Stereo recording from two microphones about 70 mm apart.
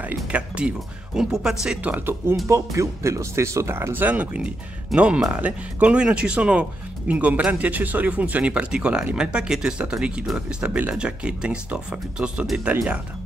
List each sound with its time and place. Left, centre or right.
0.0 s speech: centre
1.8 s speech: right
2.4 s speech: right; by 12.8 s centre